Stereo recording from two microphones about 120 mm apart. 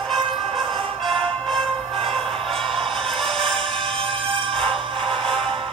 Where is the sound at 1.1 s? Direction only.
50° right (ahead or behind).